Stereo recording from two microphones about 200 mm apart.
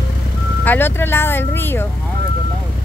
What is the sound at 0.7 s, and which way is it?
Music, 10° left (ahead or behind).